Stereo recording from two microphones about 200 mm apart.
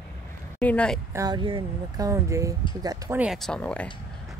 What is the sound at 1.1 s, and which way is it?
Speech, 20° right (ahead or behind).